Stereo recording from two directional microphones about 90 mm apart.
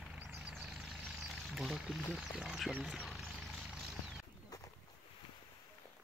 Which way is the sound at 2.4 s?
5° right (ahead or behind).